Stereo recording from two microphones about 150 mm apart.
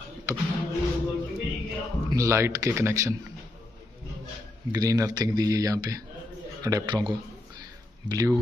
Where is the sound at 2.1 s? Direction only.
20° right (ahead or behind).